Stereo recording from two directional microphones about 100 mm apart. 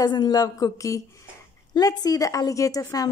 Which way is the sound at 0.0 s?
45° left (ahead or behind).